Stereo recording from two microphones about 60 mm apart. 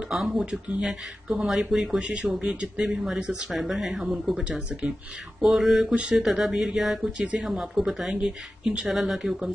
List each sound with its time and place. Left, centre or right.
0.1 s speech: centre
5.9 s speech: centre
6.2 s speech: centre